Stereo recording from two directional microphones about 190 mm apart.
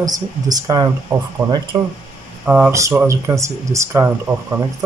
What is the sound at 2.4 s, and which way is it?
Speech, 10° right (ahead or behind).